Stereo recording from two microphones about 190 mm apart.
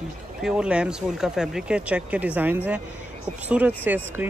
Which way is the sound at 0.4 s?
5° right (ahead or behind).